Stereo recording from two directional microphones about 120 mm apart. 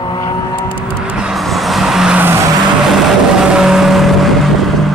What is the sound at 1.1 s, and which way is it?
Vehicle, 5° right (ahead or behind).